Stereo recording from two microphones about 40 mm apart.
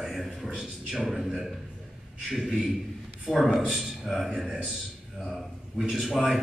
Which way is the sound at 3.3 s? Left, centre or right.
Centre.